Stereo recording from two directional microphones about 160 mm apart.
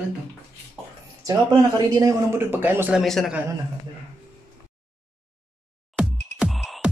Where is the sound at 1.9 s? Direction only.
20° right (ahead or behind).